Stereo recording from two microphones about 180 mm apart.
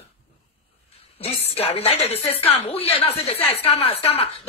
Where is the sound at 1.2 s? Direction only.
35° left (ahead or behind).